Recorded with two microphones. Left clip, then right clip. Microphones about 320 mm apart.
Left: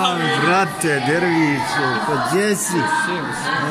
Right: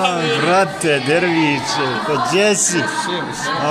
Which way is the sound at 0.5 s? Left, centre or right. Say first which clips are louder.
Right 4 dB; centre.